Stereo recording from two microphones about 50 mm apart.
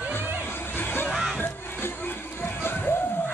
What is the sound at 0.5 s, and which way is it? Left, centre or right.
Music, left.